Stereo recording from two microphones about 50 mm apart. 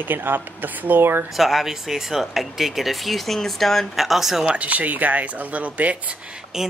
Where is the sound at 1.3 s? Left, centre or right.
Centre.